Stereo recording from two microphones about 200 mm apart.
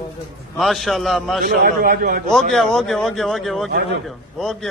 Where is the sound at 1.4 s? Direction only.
45° right (ahead or behind).